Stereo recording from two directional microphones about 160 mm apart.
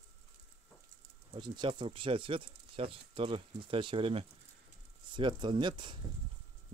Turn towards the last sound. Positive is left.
turn(degrees=-30)  # may be behind; listen again after turning